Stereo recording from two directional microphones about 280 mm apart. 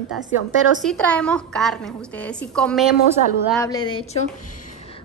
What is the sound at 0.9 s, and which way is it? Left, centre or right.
A woman's voice, centre.